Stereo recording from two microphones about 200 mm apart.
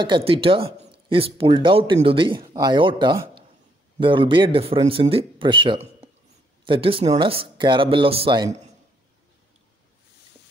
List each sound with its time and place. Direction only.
0.0 s speech: 25° right (ahead or behind)